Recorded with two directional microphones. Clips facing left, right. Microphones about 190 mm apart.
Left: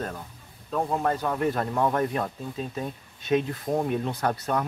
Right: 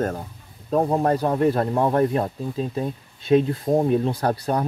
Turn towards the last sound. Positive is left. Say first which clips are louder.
# right 4 dB
turn(degrees=-35)  # may be behind; listen again after turning